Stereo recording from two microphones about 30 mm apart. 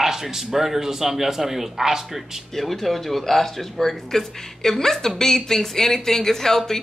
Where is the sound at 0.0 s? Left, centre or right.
Centre.